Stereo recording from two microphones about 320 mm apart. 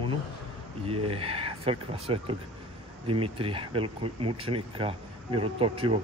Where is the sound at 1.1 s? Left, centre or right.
Centre.